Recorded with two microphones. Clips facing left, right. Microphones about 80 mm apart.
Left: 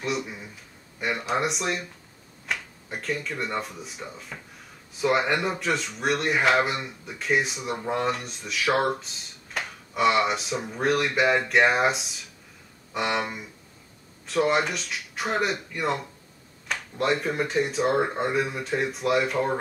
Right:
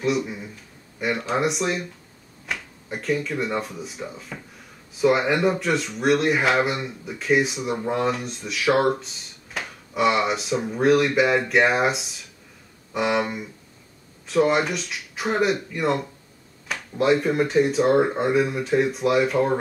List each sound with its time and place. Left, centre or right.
0.0 s speech: centre